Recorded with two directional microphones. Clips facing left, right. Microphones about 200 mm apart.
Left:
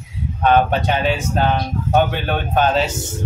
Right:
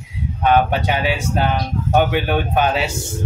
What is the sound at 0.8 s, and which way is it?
Speech, 10° right (ahead or behind).